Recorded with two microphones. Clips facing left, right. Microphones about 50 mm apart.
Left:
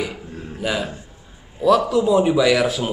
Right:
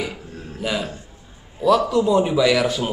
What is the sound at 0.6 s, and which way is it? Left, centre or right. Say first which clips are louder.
A man's voice: left 1 dB; centre.